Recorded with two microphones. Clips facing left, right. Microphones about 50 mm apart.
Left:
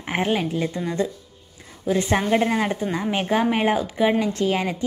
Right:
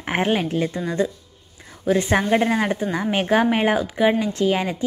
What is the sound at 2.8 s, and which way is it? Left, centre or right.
Speech, right.